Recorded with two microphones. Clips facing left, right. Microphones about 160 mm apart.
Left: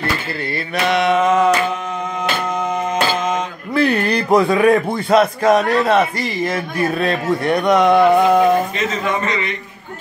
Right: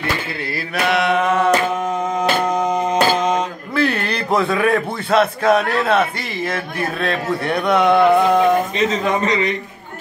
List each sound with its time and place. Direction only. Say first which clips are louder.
0.5 s music: left 1 dB; centre (ahead or behind)
2.1 s music: right 3 dB; 40° right (ahead or behind)
3.1 s mantra: right 2 dB; 35° right (ahead or behind)
3.7 s a man's voice: left 4 dB; centre (ahead or behind)
6.2 s music: left 3 dB; centre (ahead or behind)
8.7 s a man's voice: right 2 dB; 35° right (ahead or behind)